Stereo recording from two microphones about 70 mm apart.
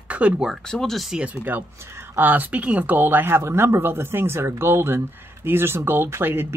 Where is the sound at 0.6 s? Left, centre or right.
Centre.